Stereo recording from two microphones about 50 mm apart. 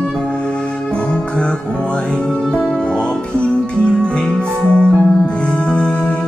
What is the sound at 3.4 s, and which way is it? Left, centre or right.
Music, left.